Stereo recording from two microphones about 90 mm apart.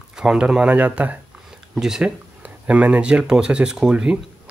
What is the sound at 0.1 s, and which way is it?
Speech, 5° right (ahead or behind).